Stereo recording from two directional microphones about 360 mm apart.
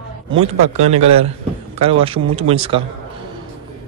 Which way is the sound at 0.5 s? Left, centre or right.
Centre.